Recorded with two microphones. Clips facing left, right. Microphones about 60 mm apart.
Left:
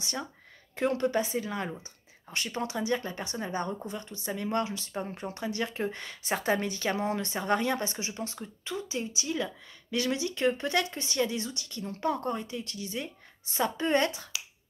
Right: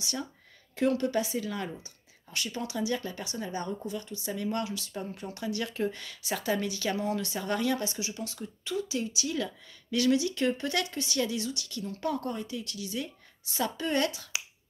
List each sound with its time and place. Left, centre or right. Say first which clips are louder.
0.0 s a woman's voice: even; left